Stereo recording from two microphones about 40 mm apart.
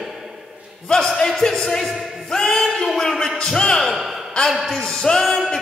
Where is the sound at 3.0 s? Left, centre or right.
Centre.